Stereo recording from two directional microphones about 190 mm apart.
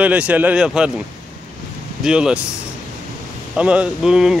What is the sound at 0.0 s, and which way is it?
Speech, 5° right (ahead or behind).